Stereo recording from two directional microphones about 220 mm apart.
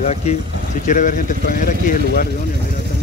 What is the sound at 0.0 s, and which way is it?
Speech, 30° left (ahead or behind).